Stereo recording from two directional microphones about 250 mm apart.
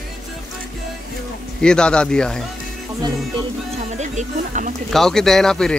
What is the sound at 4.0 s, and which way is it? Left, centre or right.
Speech, right.